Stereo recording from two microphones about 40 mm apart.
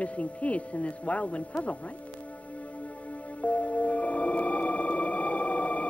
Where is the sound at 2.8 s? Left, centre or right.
Left.